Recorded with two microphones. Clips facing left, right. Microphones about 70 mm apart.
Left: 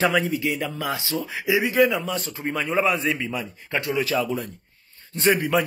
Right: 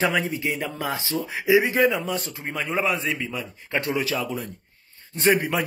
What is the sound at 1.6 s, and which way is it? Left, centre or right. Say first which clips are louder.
Speech: left 1 dB; right.